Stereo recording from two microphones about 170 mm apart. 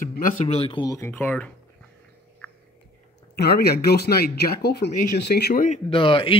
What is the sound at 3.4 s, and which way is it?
Speech, 70° left (ahead or behind).